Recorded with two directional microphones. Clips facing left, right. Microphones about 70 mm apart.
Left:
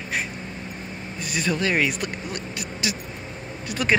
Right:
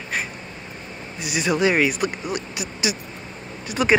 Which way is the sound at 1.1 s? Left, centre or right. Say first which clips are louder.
Right 4 dB; centre.